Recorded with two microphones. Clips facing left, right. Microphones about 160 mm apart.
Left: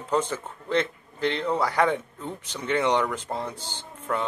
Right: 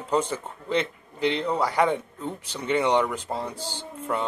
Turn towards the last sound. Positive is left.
turn(degrees=-10)  # may be behind; listen again after turning